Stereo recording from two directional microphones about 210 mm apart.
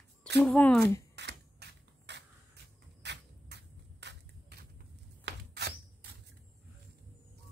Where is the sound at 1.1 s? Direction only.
55° right (ahead or behind).